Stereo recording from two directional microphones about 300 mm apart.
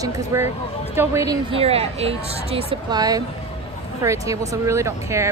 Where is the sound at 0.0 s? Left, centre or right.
Centre.